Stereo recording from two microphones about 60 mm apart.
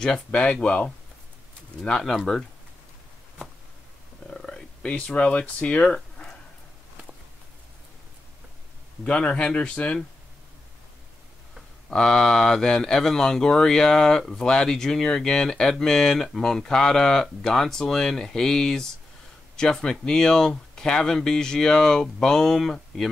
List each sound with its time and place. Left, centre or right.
0.0 s speech: centre
4.3 s a sound: centre
4.9 s speech: left
9.0 s speech: centre
11.9 s speech: centre